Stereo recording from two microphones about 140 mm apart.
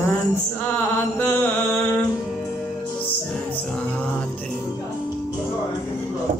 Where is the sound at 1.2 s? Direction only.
15° left (ahead or behind).